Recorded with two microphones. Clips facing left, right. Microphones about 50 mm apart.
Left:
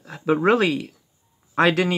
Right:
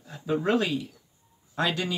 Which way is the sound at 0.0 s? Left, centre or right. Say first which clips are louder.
Left 8 dB; left.